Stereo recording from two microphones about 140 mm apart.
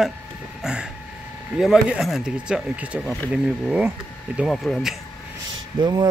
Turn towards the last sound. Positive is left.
turn(degrees=-30)  # may be behind; listen again after turning